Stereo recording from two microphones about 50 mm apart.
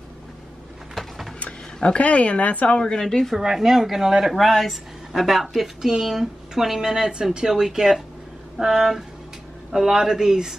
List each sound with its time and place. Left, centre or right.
0.9 s a sound: centre
1.4 s speech: left
2.8 s speech: centre
3.3 s a woman's voice: centre